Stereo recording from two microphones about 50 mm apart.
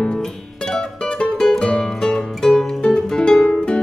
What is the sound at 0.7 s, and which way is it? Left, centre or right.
Music, left.